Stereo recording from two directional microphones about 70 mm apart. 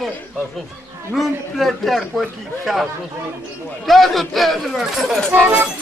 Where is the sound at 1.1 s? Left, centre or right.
Centre.